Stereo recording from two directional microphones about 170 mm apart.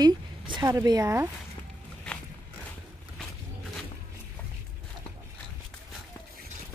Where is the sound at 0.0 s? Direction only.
25° right (ahead or behind).